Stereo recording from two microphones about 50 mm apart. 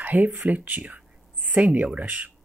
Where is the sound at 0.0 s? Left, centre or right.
Right.